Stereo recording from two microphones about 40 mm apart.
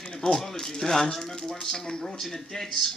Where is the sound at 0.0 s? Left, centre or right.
Centre.